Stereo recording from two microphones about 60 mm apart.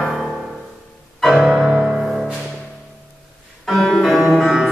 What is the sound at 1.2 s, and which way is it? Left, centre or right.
Music, centre.